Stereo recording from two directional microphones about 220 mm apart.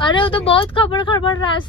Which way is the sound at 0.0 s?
20° left (ahead or behind).